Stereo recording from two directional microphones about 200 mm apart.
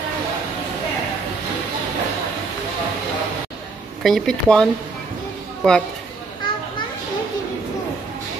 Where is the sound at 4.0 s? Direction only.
5° left (ahead or behind).